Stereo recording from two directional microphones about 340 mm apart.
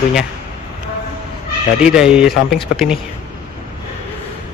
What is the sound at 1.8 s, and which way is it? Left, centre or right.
Speech, centre.